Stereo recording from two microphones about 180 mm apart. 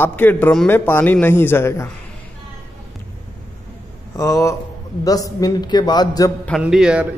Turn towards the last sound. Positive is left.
turn(degrees=-5)  # may be behind; listen again after turning